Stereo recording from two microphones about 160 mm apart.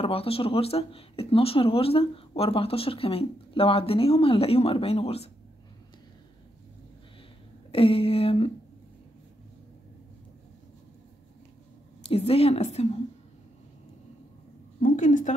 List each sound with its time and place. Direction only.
0.0 s speech: 35° left (ahead or behind)
7.7 s speech: 35° left (ahead or behind)
12.0 s speech: 40° left (ahead or behind)
14.8 s a woman's voice: 50° left (ahead or behind)